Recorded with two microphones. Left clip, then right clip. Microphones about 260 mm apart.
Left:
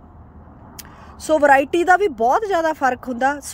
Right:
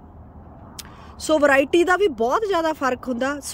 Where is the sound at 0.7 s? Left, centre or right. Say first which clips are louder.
Right 1 dB; centre.